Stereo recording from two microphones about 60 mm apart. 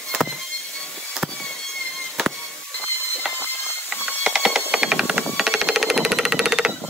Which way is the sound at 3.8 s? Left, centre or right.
Right.